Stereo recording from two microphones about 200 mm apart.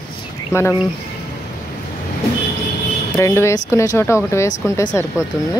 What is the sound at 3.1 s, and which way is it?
Speech, 15° left (ahead or behind).